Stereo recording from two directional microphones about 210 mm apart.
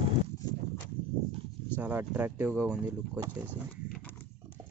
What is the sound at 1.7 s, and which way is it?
Speech, 10° right (ahead or behind).